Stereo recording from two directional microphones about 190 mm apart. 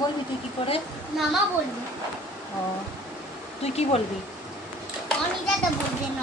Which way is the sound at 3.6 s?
35° left (ahead or behind).